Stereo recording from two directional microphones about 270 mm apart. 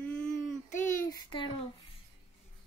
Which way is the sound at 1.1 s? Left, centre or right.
Centre.